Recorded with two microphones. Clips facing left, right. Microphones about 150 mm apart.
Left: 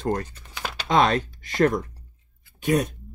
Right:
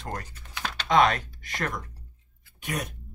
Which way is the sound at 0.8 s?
30° left (ahead or behind).